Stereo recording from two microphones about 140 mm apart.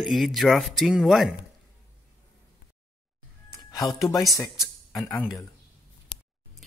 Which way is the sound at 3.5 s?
25° left (ahead or behind).